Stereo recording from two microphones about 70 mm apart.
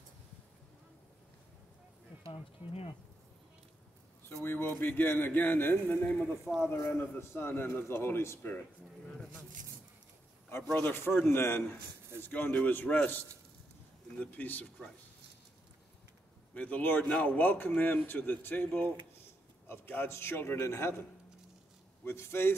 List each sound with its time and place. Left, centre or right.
4.4 s a man's voice: left
6.4 s speech: centre
6.7 s a man's voice: left
8.4 s a man's voice: left
10.5 s a man's voice: left
16.5 s a man's voice: left
22.0 s a man's voice: left